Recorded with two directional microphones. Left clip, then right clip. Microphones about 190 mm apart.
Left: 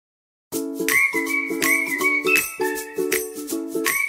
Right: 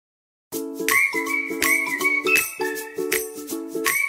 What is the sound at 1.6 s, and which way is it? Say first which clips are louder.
Jingle: even; centre (ahead or behind).